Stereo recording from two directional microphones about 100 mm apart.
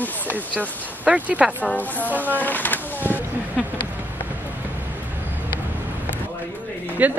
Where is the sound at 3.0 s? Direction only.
20° right (ahead or behind).